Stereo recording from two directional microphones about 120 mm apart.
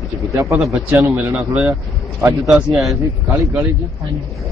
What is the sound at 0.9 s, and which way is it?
Speech, 10° right (ahead or behind).